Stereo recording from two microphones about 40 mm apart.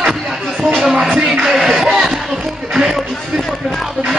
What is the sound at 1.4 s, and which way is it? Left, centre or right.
Music, centre.